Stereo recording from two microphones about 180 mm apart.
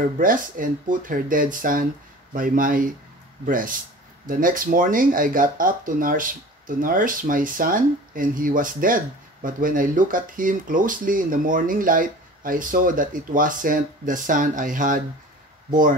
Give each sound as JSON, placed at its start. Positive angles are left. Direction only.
{"t": 0.2, "sound": "speech", "side_deg": -50}